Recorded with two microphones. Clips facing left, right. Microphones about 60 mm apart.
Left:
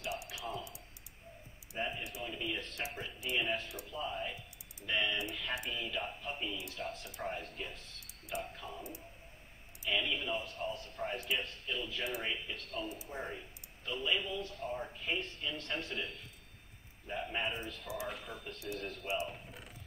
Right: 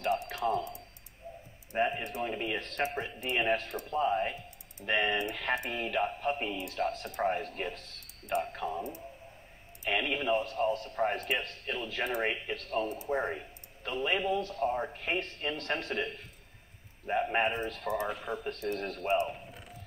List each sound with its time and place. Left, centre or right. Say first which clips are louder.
0.0 s drip: right 11 dB; right
1.8 s a man's voice: right 9 dB; right
19.0 s speech: right 9 dB; right